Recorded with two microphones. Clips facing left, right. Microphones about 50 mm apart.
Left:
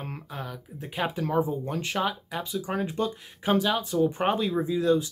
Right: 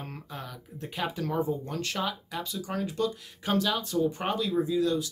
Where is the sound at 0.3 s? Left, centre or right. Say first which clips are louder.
Left 3 dB; centre.